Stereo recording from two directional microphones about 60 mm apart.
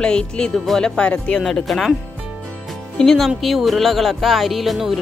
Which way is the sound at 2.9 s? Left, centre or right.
Centre.